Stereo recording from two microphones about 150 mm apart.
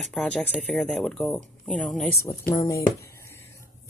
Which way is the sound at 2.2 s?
15° left (ahead or behind).